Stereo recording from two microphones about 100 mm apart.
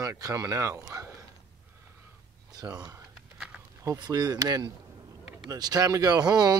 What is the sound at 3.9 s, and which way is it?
Speech, 45° right (ahead or behind).